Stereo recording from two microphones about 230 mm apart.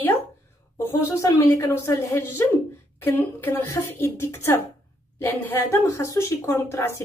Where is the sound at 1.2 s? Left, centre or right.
Centre.